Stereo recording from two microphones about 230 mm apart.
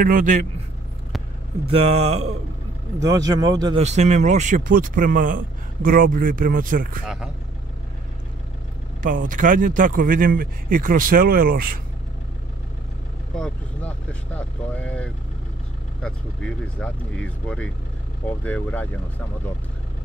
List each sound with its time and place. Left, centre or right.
0.0 s speech: right
1.7 s speech: right
3.0 s speech: centre
3.8 s speech: right
9.0 s speech: right
13.4 s speech: centre